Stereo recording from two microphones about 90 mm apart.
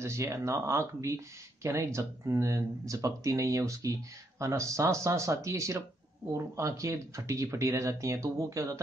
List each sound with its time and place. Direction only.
0.0 s speech: 35° right (ahead or behind)